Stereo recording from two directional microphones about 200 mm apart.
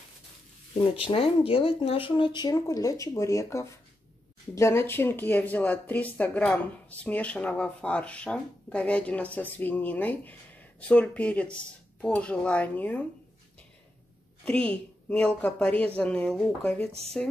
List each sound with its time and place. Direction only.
0.9 s speech: 30° left (ahead or behind); by 13.0 s 10° left (ahead or behind)
14.4 s a woman's voice: 5° left (ahead or behind)